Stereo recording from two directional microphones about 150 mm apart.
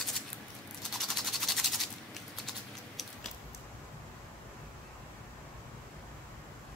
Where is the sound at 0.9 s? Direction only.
Centre (ahead or behind).